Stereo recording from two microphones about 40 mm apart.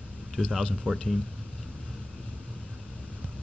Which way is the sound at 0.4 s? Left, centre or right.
Left.